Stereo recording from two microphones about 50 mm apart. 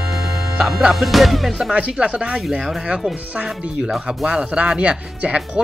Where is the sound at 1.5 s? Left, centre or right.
Centre.